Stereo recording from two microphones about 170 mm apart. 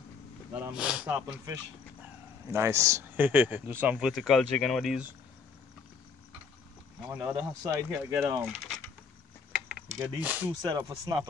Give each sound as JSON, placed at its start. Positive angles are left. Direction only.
{"t": 0.6, "sound": "speech", "side_deg": -5}
{"t": 4.1, "sound": "speech", "side_deg": 0}
{"t": 7.1, "sound": "speech", "side_deg": -10}
{"t": 8.5, "sound": "speech", "side_deg": 0}
{"t": 9.9, "sound": "speech", "side_deg": -10}
{"t": 10.6, "sound": "speech", "side_deg": -20}